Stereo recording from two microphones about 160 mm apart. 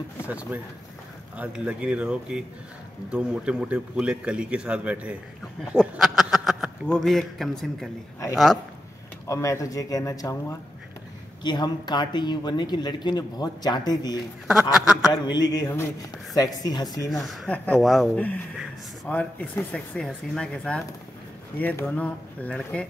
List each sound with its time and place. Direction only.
0.3 s a man's voice: 10° right (ahead or behind)
9.3 s speech: 20° left (ahead or behind)
11.4 s speech: 25° left (ahead or behind)
14.5 s speech: 5° right (ahead or behind)
15.3 s speech: 25° left (ahead or behind)
17.1 s speech: centre (ahead or behind)
19.0 s speech: 10° left (ahead or behind)